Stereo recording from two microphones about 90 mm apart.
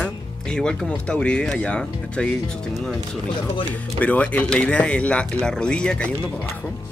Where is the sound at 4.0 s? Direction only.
15° left (ahead or behind).